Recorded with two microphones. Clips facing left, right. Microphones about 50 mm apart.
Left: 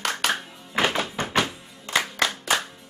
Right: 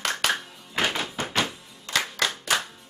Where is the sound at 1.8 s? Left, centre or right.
Centre.